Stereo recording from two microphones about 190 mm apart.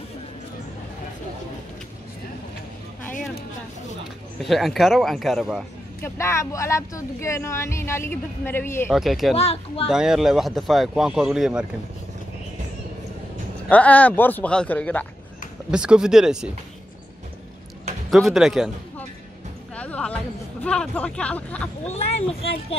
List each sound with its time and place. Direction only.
3.1 s a sound: 45° left (ahead or behind)
4.4 s speech: centre (ahead or behind)
6.0 s speech: 15° left (ahead or behind)
8.9 s speech: centre (ahead or behind)
9.3 s speech: 30° left (ahead or behind)
9.8 s speech: 5° right (ahead or behind)
13.7 s speech: 10° left (ahead or behind)
15.7 s speech: 5° right (ahead or behind)
18.1 s speech: centre (ahead or behind)
19.7 s music: 5° left (ahead or behind)
20.6 s speech: 5° left (ahead or behind)
21.8 s speech: 35° left (ahead or behind)